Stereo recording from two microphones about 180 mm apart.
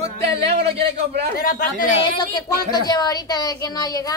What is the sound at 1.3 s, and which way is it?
Speech, 55° left (ahead or behind).